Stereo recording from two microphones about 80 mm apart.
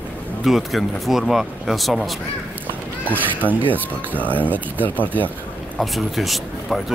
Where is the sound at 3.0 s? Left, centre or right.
Left.